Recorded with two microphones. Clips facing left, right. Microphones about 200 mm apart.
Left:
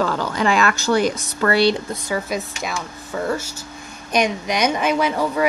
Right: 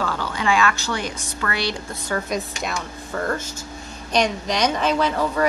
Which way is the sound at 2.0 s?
5° left (ahead or behind).